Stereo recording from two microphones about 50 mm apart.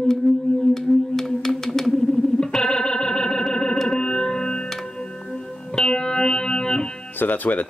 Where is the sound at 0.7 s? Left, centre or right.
Centre.